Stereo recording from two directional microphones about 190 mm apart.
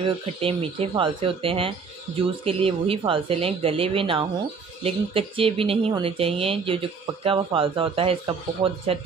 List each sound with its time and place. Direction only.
0.0 s speech: 30° right (ahead or behind)